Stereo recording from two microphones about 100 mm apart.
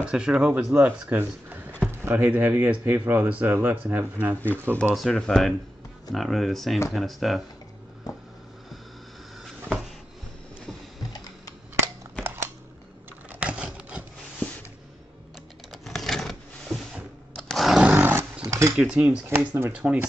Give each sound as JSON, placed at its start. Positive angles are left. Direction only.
{"t": 0.0, "sound": "speech", "side_deg": -10}
{"t": 4.9, "sound": "speech", "side_deg": 5}
{"t": 11.0, "sound": "typing", "side_deg": 35}
{"t": 11.8, "sound": "a sound", "side_deg": -25}
{"t": 13.3, "sound": "typing", "side_deg": -10}
{"t": 15.7, "sound": "scissors", "side_deg": 0}
{"t": 17.5, "sound": "chainsaw", "side_deg": 0}
{"t": 17.7, "sound": "dog", "side_deg": -15}
{"t": 18.4, "sound": "a sound", "side_deg": -30}
{"t": 18.8, "sound": "speech", "side_deg": -5}
{"t": 19.2, "sound": "speech", "side_deg": -25}
{"t": 19.7, "sound": "speech", "side_deg": -10}